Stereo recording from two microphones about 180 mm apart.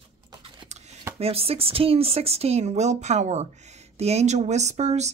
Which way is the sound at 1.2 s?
35° right (ahead or behind).